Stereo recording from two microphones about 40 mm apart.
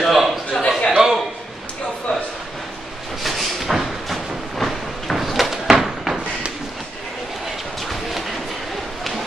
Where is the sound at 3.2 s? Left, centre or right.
Centre.